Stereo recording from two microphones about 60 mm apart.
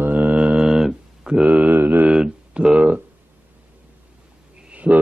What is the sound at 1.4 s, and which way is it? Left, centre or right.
Mantra, right.